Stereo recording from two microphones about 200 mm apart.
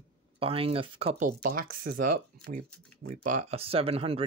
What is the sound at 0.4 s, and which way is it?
Speech, 30° right (ahead or behind).